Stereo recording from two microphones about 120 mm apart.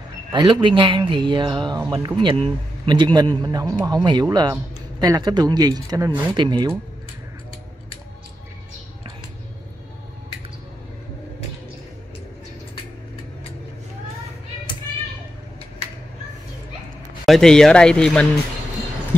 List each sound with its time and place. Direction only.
0.3 s speech: 45° right (ahead or behind)
2.9 s speech: 35° right (ahead or behind)
17.3 s speech: 5° left (ahead or behind)